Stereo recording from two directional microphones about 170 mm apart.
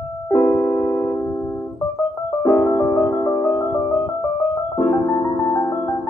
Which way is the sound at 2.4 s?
10° left (ahead or behind).